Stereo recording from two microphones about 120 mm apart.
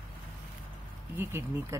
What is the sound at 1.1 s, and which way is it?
Speech, 20° right (ahead or behind).